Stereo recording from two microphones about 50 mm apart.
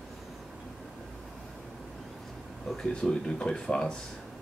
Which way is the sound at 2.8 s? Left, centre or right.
Centre.